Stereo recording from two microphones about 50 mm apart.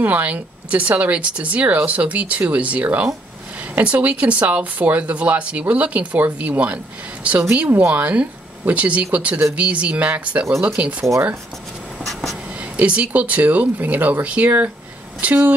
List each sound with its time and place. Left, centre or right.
0.0 s speech: right
12.0 s writing: centre
12.7 s speech: right
14.2 s speech: right